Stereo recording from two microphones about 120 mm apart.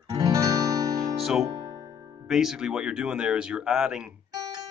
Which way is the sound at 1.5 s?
35° right (ahead or behind).